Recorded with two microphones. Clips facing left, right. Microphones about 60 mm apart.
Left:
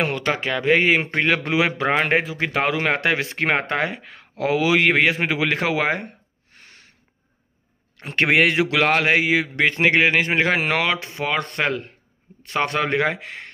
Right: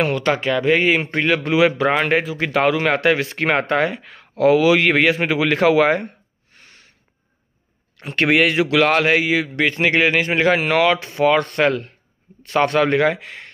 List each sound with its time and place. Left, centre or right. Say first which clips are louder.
0.2 s speech: right 4 dB; centre
8.0 s speech: right 1 dB; left
10.9 s speech: right 7 dB; centre; by 13.5 s left